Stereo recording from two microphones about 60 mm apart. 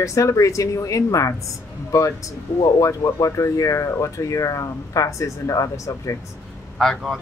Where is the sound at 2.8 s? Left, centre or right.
Left.